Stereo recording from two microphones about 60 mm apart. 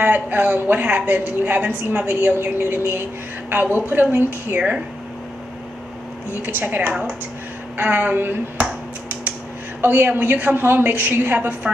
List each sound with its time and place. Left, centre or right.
0.0 s a woman's voice: right
6.4 s a woman's voice: right
6.9 s speech: centre
7.7 s a woman's voice: right
9.8 s a woman's voice: right